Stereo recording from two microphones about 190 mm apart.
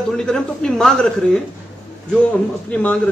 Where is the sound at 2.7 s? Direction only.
5° left (ahead or behind).